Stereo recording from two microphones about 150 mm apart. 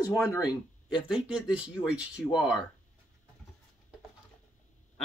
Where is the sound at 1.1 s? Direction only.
5° right (ahead or behind).